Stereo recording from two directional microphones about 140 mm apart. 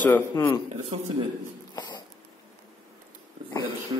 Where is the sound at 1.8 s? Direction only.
30° left (ahead or behind).